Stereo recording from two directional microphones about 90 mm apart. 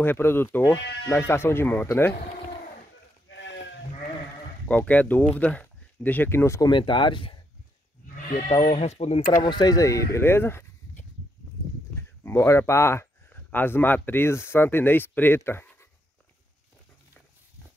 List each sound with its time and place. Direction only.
0.0 s speech: 25° left (ahead or behind)
4.6 s speech: 15° left (ahead or behind)
6.7 s speech: 65° left (ahead or behind)
8.5 s speech: 70° left (ahead or behind)
9.4 s speech: 55° left (ahead or behind); by 10.2 s 40° left (ahead or behind)
10.2 s a sound: 25° left (ahead or behind)
11.9 s speech: 25° left (ahead or behind)